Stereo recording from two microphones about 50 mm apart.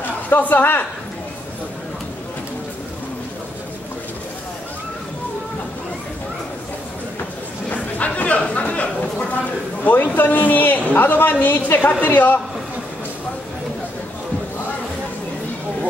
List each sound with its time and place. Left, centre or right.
0.3 s a woman's voice: left
7.7 s chatter: left
9.8 s a woman's voice: left